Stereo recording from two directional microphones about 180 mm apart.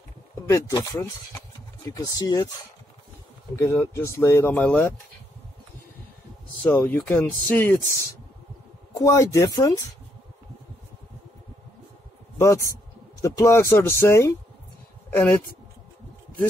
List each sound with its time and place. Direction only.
0.5 s speech: 20° left (ahead or behind)
3.5 s speech: 15° left (ahead or behind)
6.6 s speech: 10° left (ahead or behind)
8.9 s speech: 15° left (ahead or behind)
12.4 s speech: 15° left (ahead or behind)